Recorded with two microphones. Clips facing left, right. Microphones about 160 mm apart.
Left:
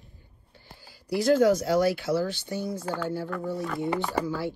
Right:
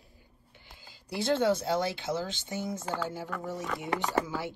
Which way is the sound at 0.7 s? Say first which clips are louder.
Left 8 dB; 20° right (ahead or behind).